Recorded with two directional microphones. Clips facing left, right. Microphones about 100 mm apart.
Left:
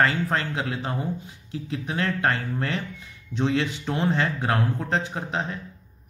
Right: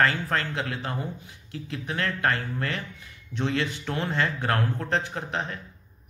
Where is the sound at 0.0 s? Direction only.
20° left (ahead or behind).